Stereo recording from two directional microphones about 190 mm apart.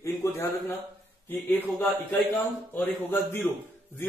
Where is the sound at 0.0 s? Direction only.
15° left (ahead or behind).